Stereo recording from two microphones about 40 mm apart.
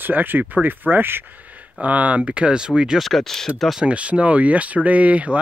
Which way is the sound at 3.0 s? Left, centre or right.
Centre.